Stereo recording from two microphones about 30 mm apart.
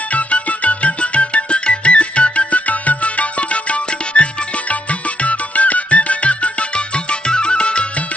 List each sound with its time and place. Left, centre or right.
0.1 s music: left
5.2 s music: left
7.1 s music: left